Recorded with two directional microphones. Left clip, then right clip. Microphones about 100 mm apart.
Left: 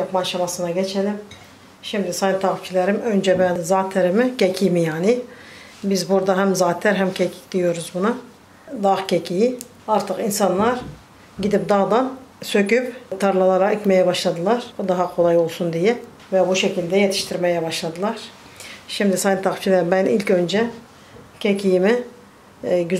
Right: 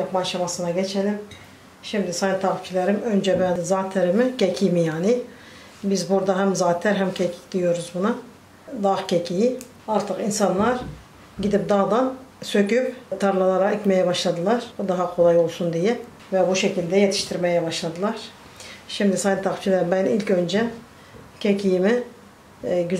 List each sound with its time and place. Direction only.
0.1 s speech: 25° left (ahead or behind)